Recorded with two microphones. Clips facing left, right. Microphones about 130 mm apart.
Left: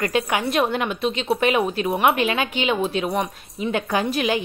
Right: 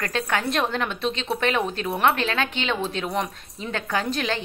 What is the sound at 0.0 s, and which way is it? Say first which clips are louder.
A woman's voice: left 4 dB; 15° left (ahead or behind).